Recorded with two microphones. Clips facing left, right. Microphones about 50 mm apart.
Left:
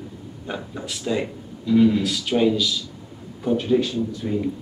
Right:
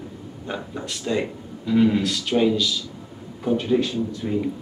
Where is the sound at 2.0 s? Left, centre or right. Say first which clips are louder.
Even; centre.